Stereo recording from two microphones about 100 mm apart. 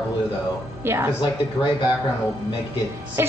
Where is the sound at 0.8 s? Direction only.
25° right (ahead or behind).